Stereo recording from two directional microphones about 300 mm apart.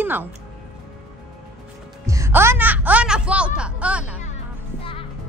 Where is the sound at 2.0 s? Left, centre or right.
Centre.